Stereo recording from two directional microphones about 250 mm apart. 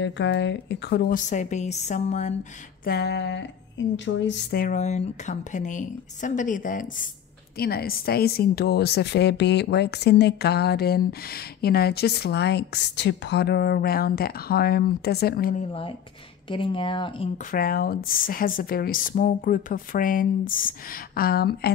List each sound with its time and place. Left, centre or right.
0.0 s a woman's voice: left
2.8 s a woman's voice: left
16.4 s a woman's voice: left
17.5 s a woman's voice: left